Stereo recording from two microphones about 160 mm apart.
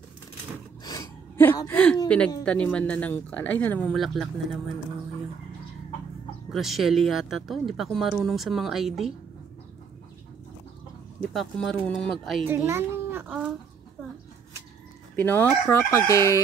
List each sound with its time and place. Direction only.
0.8 s a sound: 25° left (ahead or behind)
1.7 s speech: 10° left (ahead or behind)
6.5 s speech: centre (ahead or behind)
11.1 s speech: 5° left (ahead or behind)
12.4 s a child's voice: 15° right (ahead or behind)
15.1 s speech: 10° left (ahead or behind)